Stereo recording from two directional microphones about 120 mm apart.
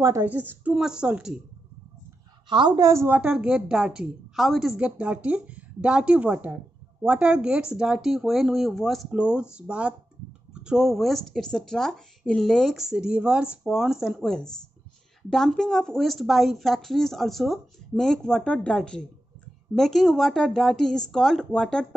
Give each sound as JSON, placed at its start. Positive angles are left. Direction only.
{"t": 0.0, "sound": "a woman's voice", "side_deg": -25}
{"t": 0.3, "sound": "a woman's voice", "side_deg": -15}
{"t": 2.5, "sound": "a woman's voice", "side_deg": -40}
{"t": 2.9, "sound": "a woman's voice", "side_deg": -25}
{"t": 3.2, "sound": "a woman's voice", "side_deg": -10}